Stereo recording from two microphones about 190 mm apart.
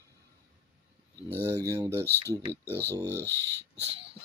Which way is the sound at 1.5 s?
15° right (ahead or behind).